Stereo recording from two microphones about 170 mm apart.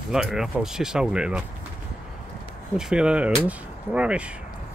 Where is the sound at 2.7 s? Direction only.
5° right (ahead or behind).